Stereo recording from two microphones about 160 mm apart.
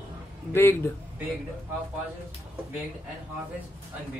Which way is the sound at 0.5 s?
15° left (ahead or behind).